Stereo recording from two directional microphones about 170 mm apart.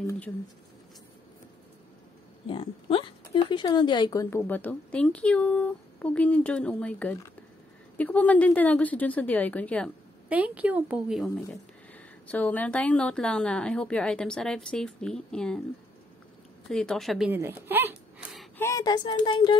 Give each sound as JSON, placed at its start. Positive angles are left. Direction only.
{"t": 2.4, "sound": "speech", "side_deg": 30}
{"t": 10.3, "sound": "a woman's voice", "side_deg": -10}
{"t": 11.2, "sound": "a woman's voice", "side_deg": 10}
{"t": 16.6, "sound": "a woman's voice", "side_deg": 5}
{"t": 17.3, "sound": "a woman's voice", "side_deg": -10}
{"t": 18.6, "sound": "speech", "side_deg": 20}